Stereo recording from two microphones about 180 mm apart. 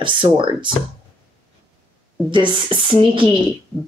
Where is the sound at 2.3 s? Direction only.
30° right (ahead or behind).